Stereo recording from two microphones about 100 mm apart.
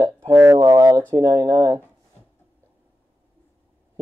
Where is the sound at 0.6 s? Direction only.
40° right (ahead or behind).